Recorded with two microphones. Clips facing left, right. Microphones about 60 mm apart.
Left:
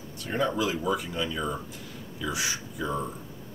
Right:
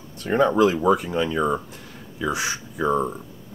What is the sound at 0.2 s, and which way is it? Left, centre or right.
Speech, right.